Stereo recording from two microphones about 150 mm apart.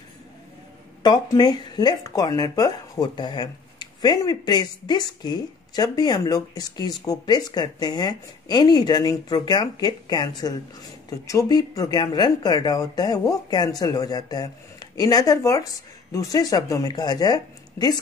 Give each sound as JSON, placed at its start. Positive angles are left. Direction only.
{"t": 1.0, "sound": "speech", "side_deg": 30}